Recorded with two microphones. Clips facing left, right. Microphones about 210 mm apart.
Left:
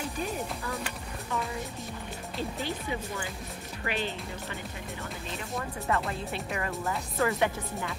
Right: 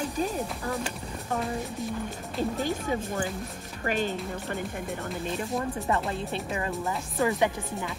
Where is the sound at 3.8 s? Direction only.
45° right (ahead or behind).